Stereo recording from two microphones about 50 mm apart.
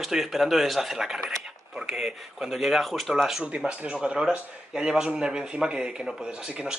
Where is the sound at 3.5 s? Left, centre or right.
Right.